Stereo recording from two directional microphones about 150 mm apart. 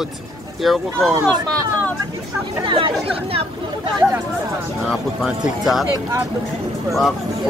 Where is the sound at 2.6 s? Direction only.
35° right (ahead or behind).